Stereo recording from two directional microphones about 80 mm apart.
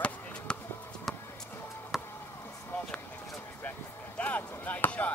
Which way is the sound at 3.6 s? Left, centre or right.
Centre.